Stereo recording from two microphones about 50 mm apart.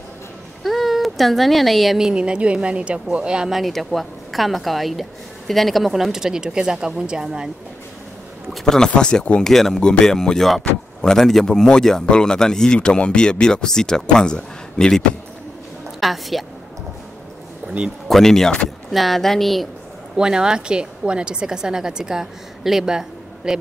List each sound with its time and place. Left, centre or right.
0.7 s speech: centre
2.0 s a woman's voice: centre
3.5 s a woman's voice: centre
8.6 s speech: centre
9.4 s speech: centre
16.0 s a woman's voice: centre
18.0 s a woman's voice: centre
20.2 s a woman's voice: centre